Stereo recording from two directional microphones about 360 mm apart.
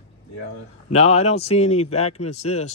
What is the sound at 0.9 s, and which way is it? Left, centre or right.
Speech, centre.